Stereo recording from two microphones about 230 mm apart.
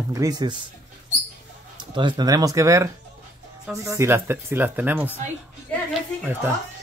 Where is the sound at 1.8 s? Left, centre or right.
Centre.